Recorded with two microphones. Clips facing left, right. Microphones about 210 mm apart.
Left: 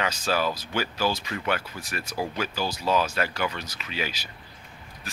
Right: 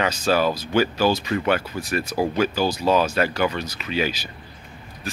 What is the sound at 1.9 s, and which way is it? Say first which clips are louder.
Speech: right 8 dB; 40° right (ahead or behind).